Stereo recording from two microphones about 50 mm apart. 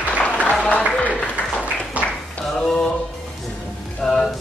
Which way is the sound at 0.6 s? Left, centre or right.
Left.